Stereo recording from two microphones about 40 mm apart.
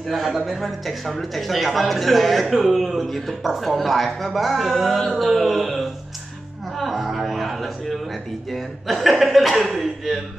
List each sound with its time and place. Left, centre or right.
0.1 s speech: centre
6.8 s a sound: centre
8.5 s chuckle: centre